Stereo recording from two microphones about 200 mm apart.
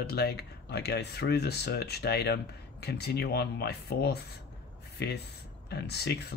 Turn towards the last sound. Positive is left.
turn(degrees=55)  # may be behind; listen again after turning